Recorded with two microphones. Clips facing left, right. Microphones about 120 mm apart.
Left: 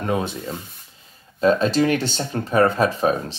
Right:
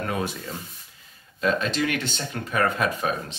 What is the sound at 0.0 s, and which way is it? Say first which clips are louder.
Speech: left 5 dB; 25° left (ahead or behind).